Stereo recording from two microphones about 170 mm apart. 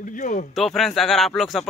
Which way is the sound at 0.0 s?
50° left (ahead or behind).